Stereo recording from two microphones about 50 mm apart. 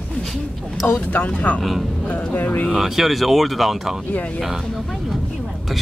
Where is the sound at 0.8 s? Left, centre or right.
Left.